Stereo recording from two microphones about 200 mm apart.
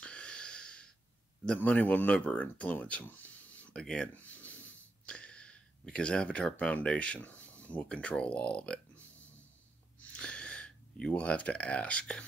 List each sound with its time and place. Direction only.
0.0 s a sound: 5° left (ahead or behind)
1.4 s speech: 5° left (ahead or behind)
10.1 s speech: 5° left (ahead or behind)